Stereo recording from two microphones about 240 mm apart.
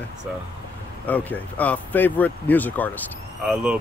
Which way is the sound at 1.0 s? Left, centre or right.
Centre.